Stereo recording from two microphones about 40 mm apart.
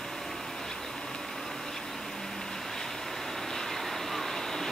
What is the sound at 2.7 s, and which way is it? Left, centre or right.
Vehicle, centre.